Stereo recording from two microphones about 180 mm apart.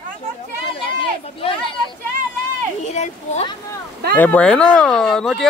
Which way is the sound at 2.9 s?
40° left (ahead or behind).